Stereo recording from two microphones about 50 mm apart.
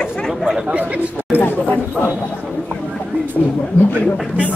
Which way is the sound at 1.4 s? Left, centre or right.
Left.